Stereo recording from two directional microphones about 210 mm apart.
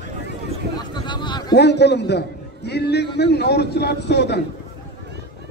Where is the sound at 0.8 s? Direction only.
20° left (ahead or behind).